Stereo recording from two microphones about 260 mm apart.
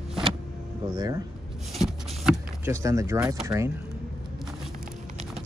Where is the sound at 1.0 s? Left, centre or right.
Centre.